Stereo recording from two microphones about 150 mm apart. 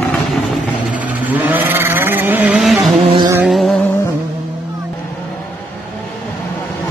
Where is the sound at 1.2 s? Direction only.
10° right (ahead or behind).